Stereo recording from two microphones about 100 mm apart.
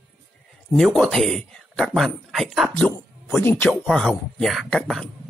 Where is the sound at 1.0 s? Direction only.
5° left (ahead or behind).